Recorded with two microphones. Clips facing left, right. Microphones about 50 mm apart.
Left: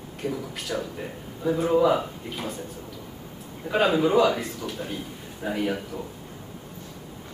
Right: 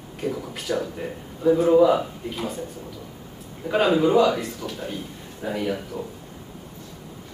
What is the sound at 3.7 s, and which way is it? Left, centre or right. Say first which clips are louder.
A man's voice: right 2 dB; centre.